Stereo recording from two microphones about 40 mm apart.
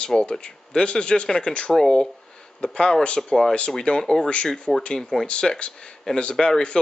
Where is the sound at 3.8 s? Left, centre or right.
Centre.